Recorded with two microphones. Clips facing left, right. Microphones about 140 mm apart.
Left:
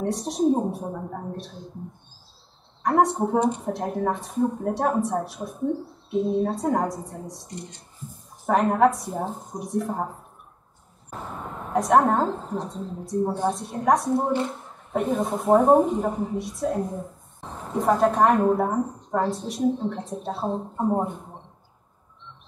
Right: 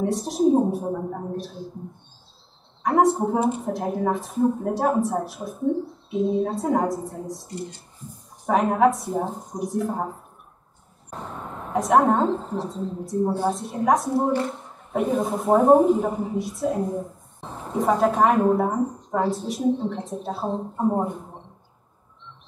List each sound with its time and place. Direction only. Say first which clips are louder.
0.0 s speech: right 2 dB; centre (ahead or behind)
2.8 s speech: right 2 dB; centre (ahead or behind)
11.7 s speech: right 1 dB; centre (ahead or behind)